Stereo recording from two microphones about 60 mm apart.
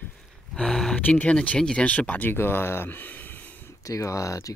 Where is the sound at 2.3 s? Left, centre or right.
Left.